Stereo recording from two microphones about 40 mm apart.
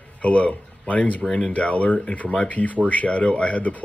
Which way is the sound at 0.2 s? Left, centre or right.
Left.